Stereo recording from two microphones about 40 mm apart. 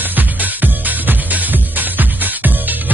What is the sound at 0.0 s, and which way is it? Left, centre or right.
Music, right.